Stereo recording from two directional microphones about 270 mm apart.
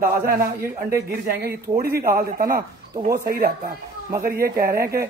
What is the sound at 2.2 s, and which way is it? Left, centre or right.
Speech, right.